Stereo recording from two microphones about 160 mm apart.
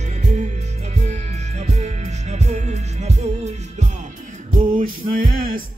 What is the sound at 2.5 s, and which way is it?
Music, 45° right (ahead or behind).